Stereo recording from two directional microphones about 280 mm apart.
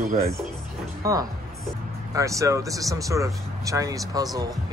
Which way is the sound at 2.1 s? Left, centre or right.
Centre.